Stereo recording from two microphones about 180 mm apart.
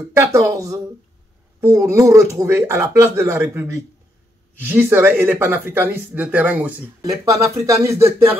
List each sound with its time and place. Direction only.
0.1 s speech: 15° right (ahead or behind)